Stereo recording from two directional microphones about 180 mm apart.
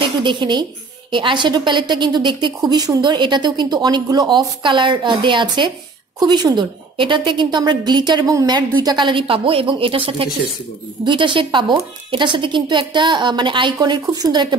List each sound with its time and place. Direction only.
0.0 s a woman's voice: 25° right (ahead or behind)